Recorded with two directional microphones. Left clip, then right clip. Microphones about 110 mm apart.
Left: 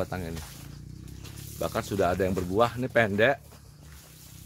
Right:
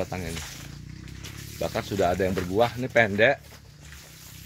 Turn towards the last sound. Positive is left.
turn(degrees=15)  # may be behind; listen again after turning